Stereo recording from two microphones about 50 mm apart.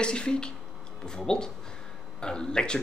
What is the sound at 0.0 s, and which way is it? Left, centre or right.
Speech, centre.